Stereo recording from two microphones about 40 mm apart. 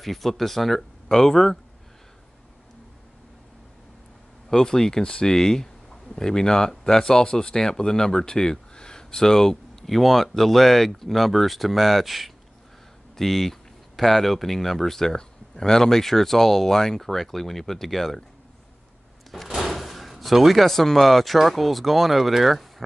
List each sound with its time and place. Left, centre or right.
0.0 s speech: centre
4.5 s speech: centre
19.3 s speech: centre